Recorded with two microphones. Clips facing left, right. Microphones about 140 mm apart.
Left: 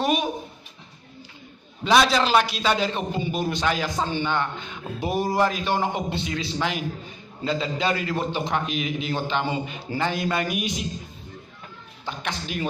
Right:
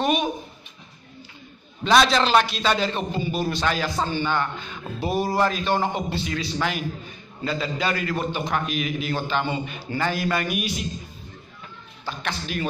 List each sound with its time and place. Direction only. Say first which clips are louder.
1.9 s a man's voice: right 1 dB; 10° left (ahead or behind)
12.0 s a man's voice: right 1 dB; 15° left (ahead or behind)